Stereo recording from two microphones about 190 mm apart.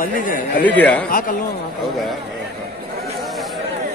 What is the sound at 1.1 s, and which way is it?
Speech, 50° left (ahead or behind).